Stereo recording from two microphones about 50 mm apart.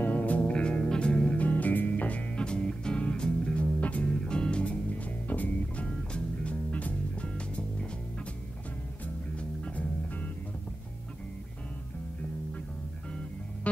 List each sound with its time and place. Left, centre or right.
0.0 s music: left
2.3 s music: centre